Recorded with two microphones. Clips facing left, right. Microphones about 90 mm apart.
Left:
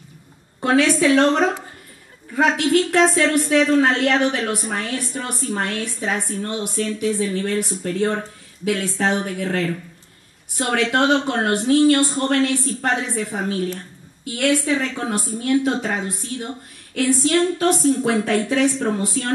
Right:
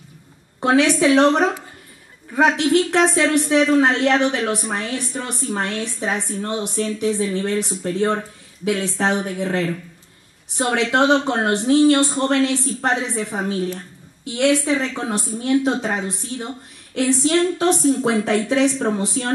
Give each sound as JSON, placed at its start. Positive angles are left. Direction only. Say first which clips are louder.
{"t": 0.6, "sound": "speech", "louder": "right 1 dB", "side_deg": -20}